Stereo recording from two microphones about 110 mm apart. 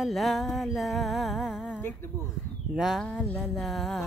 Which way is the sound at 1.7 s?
20° left (ahead or behind).